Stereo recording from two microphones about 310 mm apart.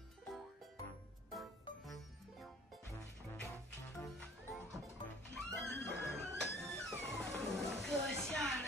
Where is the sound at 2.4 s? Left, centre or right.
Centre.